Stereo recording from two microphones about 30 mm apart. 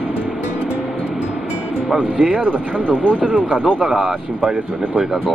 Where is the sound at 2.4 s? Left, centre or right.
Right.